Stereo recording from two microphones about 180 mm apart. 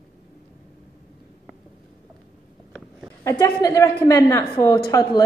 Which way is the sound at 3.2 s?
15° left (ahead or behind).